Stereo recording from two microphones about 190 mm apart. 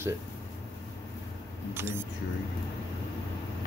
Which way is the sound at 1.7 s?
10° right (ahead or behind).